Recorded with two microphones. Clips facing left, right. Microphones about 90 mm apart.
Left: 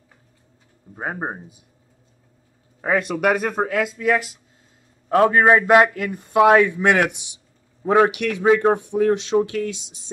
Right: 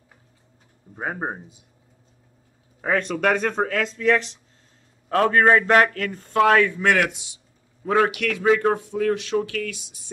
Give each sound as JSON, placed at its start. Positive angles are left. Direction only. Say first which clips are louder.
{"t": 2.8, "sound": "a man's voice", "louder": "left 2 dB", "side_deg": 10}